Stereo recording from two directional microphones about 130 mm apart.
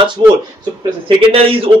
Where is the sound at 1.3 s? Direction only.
45° right (ahead or behind).